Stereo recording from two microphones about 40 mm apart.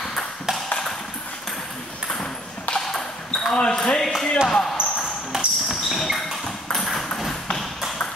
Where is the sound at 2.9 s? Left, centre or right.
Centre.